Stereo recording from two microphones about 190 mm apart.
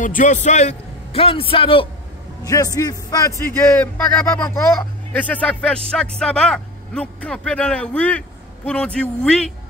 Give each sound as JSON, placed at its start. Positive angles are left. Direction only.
{"t": 0.0, "sound": "a man's voice", "side_deg": 45}
{"t": 5.1, "sound": "speech", "side_deg": 5}